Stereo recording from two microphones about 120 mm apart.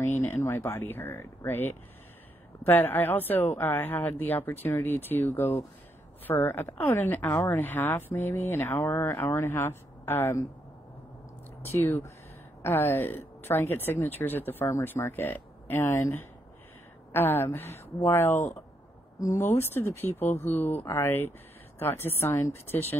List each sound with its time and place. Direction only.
0.2 s a woman's voice: 20° left (ahead or behind)
11.7 s a woman's voice: 20° left (ahead or behind)